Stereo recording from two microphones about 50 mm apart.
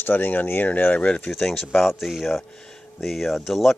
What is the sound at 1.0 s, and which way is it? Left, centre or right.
Speech, centre.